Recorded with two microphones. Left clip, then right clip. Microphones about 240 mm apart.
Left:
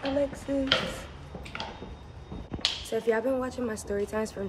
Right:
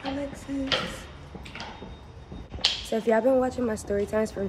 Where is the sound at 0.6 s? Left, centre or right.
Centre.